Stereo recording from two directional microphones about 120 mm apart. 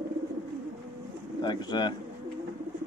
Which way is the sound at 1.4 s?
40° left (ahead or behind).